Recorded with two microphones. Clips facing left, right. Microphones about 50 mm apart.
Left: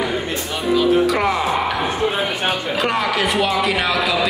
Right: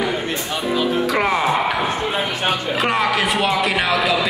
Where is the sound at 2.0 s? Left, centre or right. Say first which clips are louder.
Left 2 dB; centre.